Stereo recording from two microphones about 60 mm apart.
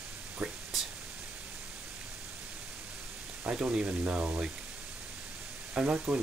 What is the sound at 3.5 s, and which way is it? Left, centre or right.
Speech, centre.